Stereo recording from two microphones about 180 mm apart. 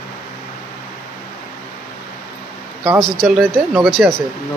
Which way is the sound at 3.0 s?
Centre (ahead or behind).